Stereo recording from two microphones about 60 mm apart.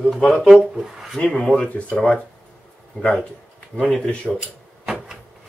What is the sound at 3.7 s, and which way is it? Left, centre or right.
Speech, centre.